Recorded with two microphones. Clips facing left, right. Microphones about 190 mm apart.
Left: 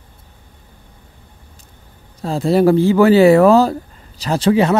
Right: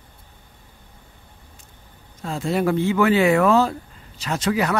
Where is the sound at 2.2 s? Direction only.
35° left (ahead or behind).